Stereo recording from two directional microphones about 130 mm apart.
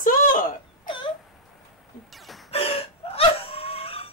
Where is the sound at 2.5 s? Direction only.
45° left (ahead or behind).